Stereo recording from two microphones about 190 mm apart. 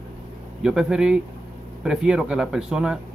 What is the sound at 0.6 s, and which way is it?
Speech, 5° right (ahead or behind).